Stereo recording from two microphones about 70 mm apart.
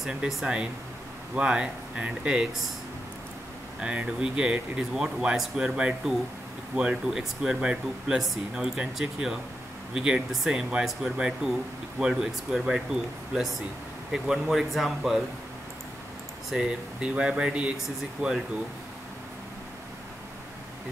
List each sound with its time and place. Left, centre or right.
0.0 s speech: centre
3.8 s speech: centre
16.4 s speech: centre
18.2 s speech: right